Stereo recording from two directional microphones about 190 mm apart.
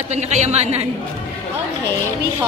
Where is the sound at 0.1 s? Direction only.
35° right (ahead or behind).